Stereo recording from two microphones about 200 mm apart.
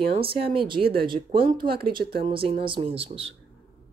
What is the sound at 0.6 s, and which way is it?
Speech, 25° right (ahead or behind).